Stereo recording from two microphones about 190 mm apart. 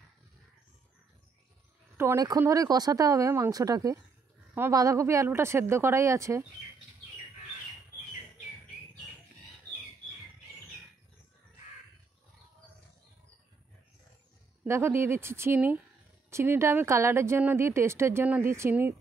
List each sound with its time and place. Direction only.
2.0 s speech: 15° right (ahead or behind)
14.6 s speech: 10° right (ahead or behind)